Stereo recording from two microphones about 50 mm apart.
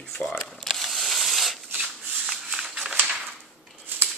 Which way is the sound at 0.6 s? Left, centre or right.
Centre.